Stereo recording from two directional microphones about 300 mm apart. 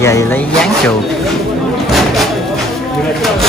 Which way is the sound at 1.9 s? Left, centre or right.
Centre.